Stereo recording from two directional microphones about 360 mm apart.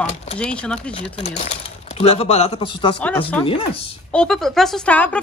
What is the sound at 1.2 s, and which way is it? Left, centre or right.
Speech, centre.